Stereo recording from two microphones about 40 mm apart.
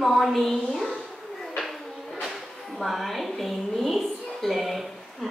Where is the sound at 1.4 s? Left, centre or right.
Centre.